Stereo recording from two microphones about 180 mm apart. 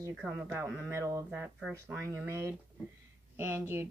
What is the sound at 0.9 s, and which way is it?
Speech, 15° right (ahead or behind).